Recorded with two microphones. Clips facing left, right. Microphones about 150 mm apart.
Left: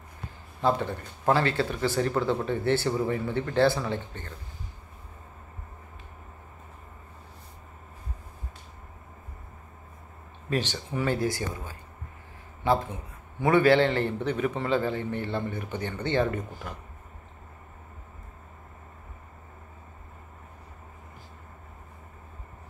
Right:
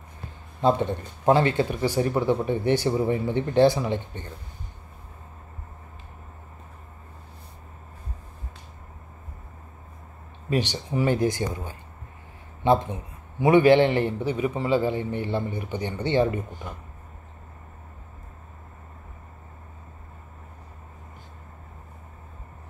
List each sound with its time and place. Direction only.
0.6 s speech: 20° right (ahead or behind)
10.5 s speech: 15° right (ahead or behind)